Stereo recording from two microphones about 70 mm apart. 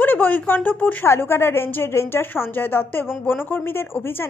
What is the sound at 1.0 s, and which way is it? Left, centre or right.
Speech, left.